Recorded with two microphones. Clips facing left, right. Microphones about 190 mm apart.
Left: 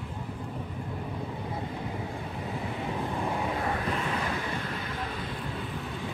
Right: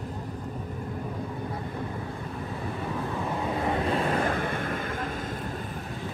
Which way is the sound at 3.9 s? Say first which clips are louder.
Right 5 dB; 45° right (ahead or behind).